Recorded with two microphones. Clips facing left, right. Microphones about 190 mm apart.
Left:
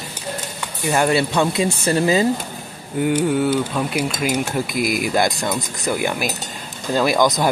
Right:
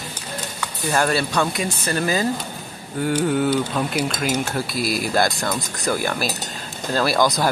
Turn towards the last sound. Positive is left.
turn(degrees=15)  # may be behind; listen again after turning